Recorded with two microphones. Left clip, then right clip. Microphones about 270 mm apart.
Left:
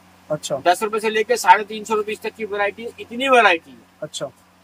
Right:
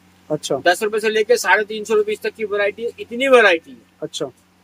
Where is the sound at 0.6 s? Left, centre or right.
Centre.